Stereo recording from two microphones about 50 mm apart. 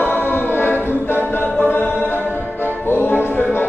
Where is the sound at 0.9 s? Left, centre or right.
Left.